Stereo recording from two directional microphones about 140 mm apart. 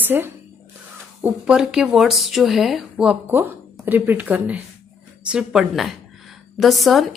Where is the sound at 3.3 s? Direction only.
15° right (ahead or behind).